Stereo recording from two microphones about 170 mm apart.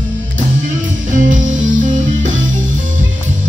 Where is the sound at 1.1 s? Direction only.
50° right (ahead or behind).